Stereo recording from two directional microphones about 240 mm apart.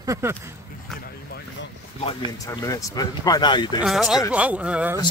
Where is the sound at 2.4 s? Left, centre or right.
Centre.